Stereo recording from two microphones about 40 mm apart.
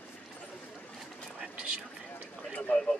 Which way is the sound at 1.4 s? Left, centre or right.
Right.